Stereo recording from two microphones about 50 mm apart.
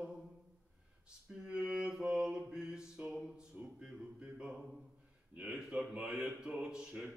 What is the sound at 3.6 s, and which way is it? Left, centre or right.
Music, right.